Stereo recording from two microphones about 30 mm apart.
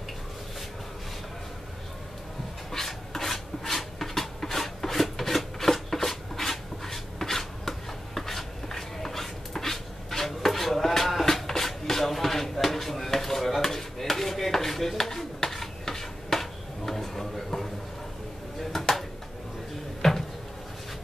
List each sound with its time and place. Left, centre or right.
2.7 s rub: centre
18.6 s a sound: centre
20.0 s cupboard open or close: centre